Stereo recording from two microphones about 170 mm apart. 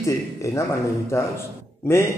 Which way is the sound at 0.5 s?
20° left (ahead or behind).